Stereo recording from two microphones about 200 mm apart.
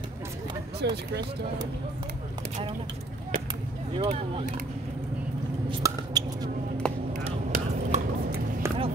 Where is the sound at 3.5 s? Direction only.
25° right (ahead or behind).